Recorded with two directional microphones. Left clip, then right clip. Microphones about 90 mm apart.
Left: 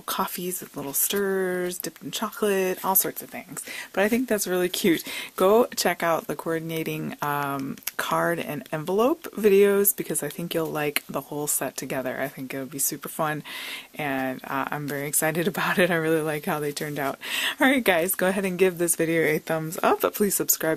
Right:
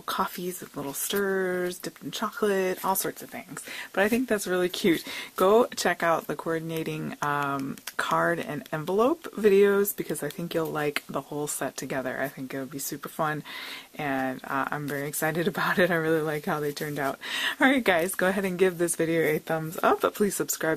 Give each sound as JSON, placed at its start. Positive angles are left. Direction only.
{"t": 0.1, "sound": "speech", "side_deg": 30}
{"t": 13.9, "sound": "speech", "side_deg": 30}